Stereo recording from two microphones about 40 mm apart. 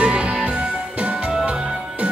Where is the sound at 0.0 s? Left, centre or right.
Right.